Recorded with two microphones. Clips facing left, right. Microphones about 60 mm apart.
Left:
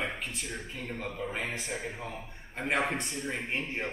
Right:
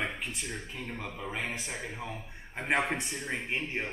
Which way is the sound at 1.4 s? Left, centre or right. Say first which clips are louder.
Left 1 dB; centre.